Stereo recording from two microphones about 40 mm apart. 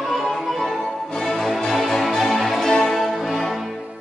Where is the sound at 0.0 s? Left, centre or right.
Centre.